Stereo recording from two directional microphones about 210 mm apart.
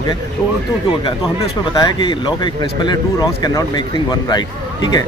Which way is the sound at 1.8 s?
20° left (ahead or behind).